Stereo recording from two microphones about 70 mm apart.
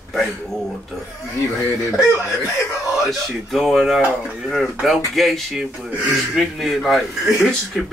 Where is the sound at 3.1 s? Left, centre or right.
Centre.